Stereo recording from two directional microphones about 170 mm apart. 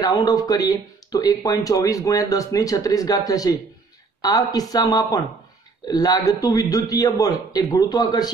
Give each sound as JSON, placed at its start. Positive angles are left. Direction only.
{"t": 0.0, "sound": "speech", "side_deg": 20}